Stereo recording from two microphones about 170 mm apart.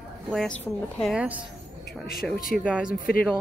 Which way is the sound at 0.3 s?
5° left (ahead or behind).